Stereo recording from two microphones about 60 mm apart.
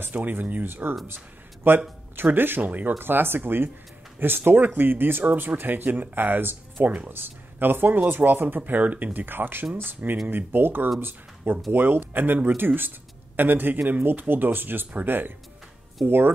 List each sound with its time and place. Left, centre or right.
0.0 s speech: right